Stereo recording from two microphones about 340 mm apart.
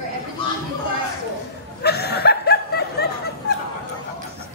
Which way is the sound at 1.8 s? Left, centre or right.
Left.